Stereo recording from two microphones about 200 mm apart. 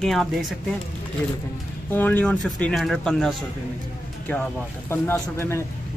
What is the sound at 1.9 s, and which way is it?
Speech, 10° left (ahead or behind).